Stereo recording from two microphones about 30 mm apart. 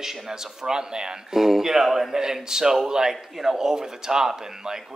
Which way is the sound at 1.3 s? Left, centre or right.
Centre.